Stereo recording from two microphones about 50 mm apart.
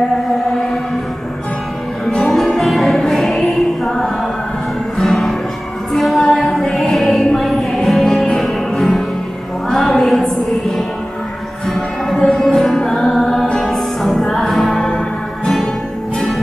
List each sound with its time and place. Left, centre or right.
2.0 s music: centre
9.8 s a sound: centre
11.6 s music: centre
12.2 s music: centre
14.8 s music: centre